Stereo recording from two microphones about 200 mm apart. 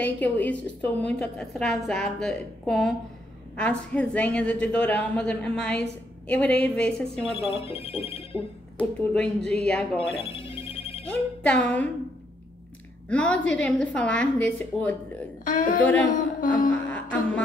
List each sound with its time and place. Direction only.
0.0 s a woman's voice: 5° left (ahead or behind)
7.3 s speech: 30° left (ahead or behind)
8.7 s a woman's voice: 5° left (ahead or behind)
10.2 s telephone bell ringing: 30° left (ahead or behind)
11.1 s speech: 5° left (ahead or behind)
13.1 s a woman's voice: 5° left (ahead or behind)
15.4 s a sound: 40° left (ahead or behind)
15.8 s speech: 5° left (ahead or behind)
16.1 s a sound: 40° left (ahead or behind)